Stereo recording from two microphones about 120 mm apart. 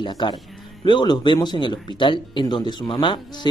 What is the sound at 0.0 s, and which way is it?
Speech, 40° left (ahead or behind).